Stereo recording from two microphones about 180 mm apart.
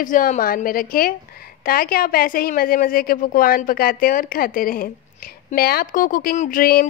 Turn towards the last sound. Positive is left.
turn(degrees=50)  # may be behind; listen again after turning